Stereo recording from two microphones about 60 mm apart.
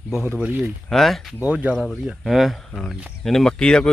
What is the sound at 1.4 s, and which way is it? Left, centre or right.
Speech, right.